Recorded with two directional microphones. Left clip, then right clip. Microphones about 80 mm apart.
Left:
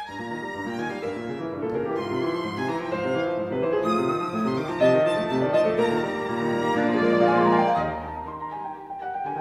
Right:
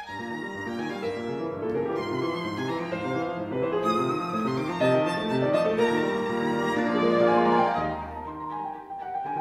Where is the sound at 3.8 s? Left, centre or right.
Right.